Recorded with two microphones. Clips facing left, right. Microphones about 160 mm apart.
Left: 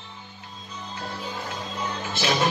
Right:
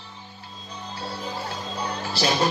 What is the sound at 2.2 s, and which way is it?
Music, 35° right (ahead or behind).